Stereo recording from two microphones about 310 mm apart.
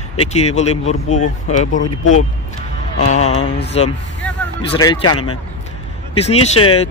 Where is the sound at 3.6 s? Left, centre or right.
Centre.